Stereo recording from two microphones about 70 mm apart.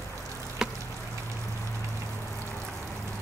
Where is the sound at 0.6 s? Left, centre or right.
Centre.